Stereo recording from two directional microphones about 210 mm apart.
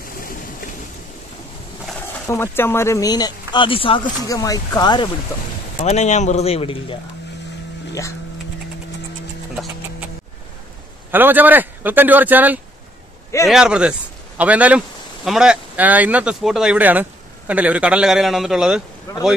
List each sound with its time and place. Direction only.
0.0 s boat: 40° left (ahead or behind)
2.2 s speech: 10° left (ahead or behind)
5.8 s speech: 35° left (ahead or behind)
11.1 s speech: 10° right (ahead or behind)
19.1 s speech: 15° left (ahead or behind)